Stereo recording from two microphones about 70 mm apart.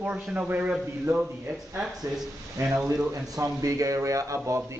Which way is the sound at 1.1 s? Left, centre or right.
Right.